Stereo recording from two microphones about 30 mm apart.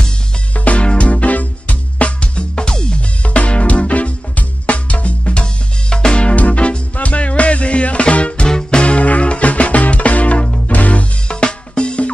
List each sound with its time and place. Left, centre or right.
0.6 s music: left
2.1 s music: left
3.3 s music: left
6.3 s music: left
8.5 s music: left
10.7 s music: left
11.2 s music: left